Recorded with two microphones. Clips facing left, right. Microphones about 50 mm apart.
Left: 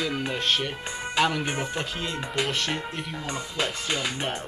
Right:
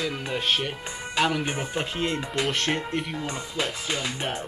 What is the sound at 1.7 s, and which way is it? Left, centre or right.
Speech, right.